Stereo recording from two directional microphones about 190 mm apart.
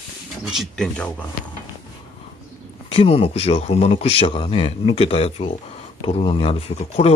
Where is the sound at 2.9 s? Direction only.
30° left (ahead or behind).